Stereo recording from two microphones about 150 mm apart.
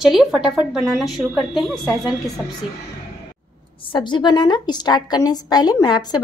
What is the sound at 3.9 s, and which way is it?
A woman's voice, 30° left (ahead or behind).